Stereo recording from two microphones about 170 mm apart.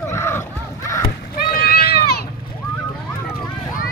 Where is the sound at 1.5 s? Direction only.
65° left (ahead or behind).